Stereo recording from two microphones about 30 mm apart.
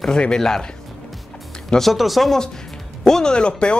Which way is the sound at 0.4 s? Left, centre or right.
Left.